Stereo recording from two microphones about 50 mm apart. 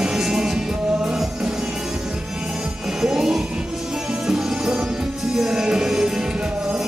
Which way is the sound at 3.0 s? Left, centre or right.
Centre.